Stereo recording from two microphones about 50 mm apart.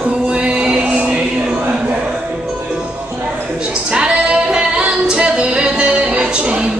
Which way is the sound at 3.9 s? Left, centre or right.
Centre.